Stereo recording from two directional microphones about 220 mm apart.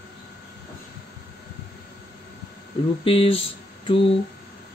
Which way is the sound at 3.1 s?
25° left (ahead or behind).